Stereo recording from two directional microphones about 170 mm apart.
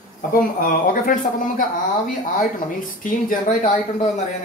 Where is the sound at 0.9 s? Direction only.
55° left (ahead or behind).